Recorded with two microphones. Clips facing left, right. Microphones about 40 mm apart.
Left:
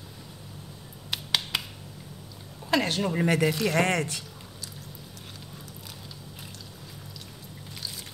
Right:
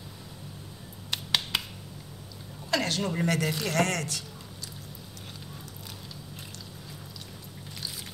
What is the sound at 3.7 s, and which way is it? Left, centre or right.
Speech, left.